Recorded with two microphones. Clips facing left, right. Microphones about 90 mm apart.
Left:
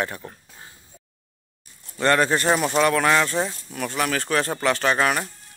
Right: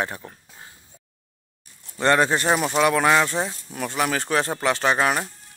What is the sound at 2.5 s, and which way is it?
Speech, 5° right (ahead or behind).